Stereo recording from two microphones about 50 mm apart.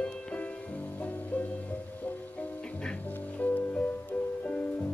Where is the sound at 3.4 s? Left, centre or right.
Left.